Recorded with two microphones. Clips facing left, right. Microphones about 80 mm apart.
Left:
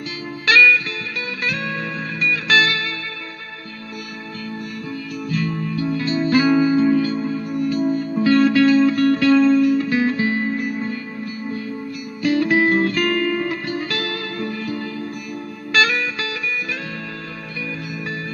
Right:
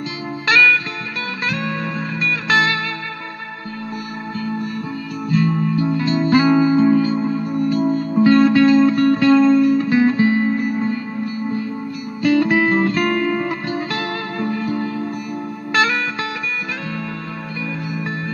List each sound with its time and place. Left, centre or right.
1.4 s music: right
5.3 s music: right
12.2 s music: right